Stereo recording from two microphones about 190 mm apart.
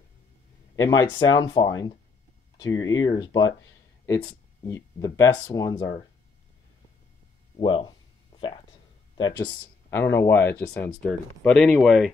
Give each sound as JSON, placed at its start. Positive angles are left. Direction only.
{"t": 0.7, "sound": "speech", "side_deg": 20}
{"t": 7.5, "sound": "speech", "side_deg": 25}
{"t": 9.1, "sound": "speech", "side_deg": 20}